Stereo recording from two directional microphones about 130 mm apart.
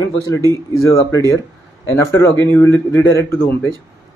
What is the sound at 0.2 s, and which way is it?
A man's voice, 25° left (ahead or behind).